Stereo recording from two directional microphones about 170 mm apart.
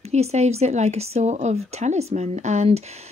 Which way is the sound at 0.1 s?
40° right (ahead or behind).